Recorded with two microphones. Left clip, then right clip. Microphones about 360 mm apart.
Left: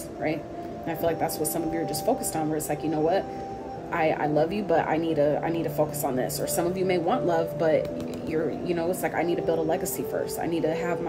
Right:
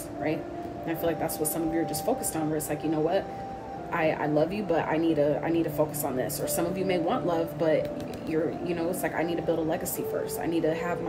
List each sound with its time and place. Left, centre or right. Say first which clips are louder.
0.8 s a woman's voice: left 3 dB; centre
2.3 s a woman's voice: left 2 dB; centre